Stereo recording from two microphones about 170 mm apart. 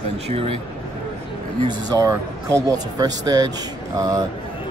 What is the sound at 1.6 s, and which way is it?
Speech, 25° right (ahead or behind).